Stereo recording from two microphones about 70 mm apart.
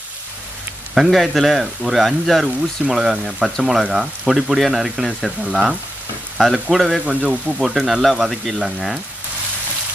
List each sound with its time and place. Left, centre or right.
0.9 s speech: centre